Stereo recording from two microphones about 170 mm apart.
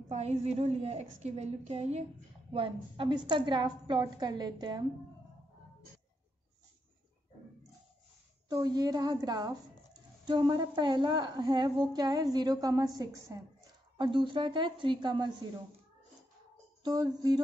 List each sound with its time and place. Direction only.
0.1 s a woman's voice: 40° right (ahead or behind); by 4.8 s 25° right (ahead or behind)
8.5 s a woman's voice: 20° right (ahead or behind)
16.8 s a woman's voice: 25° right (ahead or behind)